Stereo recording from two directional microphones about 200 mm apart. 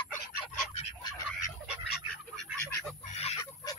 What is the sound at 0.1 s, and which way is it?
Duck, 45° left (ahead or behind).